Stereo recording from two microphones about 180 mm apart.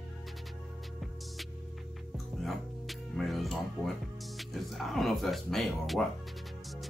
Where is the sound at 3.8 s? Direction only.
5° left (ahead or behind).